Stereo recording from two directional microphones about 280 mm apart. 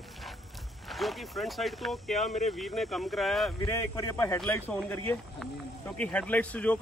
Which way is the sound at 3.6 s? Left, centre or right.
Centre.